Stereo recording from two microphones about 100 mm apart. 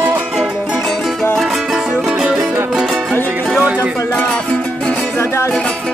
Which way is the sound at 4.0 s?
15° left (ahead or behind).